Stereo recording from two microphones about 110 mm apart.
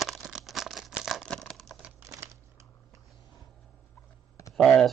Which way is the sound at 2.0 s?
25° right (ahead or behind).